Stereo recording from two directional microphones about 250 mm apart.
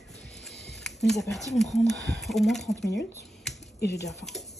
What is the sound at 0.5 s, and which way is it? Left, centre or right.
Music, left.